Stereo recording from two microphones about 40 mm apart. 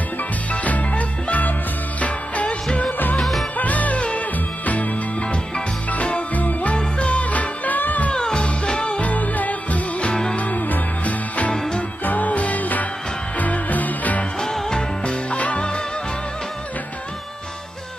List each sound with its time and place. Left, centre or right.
0.5 s music: left
3.2 s music: centre
3.5 s music: left
8.1 s music: left
9.1 s music: left
14.4 s music: centre
15.2 s music: left